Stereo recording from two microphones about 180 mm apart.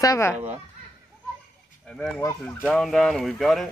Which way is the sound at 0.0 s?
15° left (ahead or behind).